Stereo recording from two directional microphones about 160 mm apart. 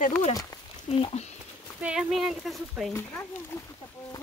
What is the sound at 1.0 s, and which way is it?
Speech, 40° left (ahead or behind).